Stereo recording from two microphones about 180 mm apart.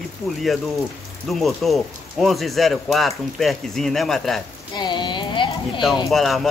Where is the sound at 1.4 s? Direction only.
Centre (ahead or behind).